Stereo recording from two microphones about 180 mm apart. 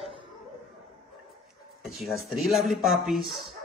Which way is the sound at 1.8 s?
Centre (ahead or behind).